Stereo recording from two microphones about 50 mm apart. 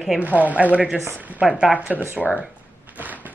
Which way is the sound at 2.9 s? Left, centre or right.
Right.